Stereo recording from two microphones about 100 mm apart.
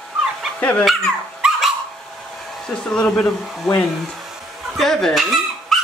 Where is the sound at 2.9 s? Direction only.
10° left (ahead or behind).